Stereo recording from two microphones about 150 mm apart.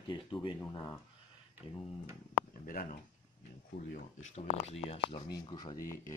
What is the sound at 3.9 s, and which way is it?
Speech, 50° left (ahead or behind).